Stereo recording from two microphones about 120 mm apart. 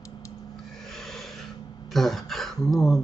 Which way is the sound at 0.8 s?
5° left (ahead or behind).